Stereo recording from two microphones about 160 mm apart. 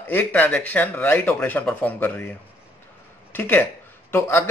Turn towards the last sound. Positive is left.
turn(degrees=15)  # may be behind; listen again after turning